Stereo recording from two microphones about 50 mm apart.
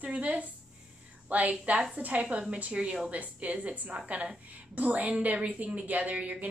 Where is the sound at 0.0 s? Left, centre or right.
Right.